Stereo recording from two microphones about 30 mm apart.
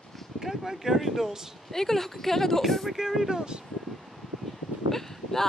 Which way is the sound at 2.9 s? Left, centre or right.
Centre.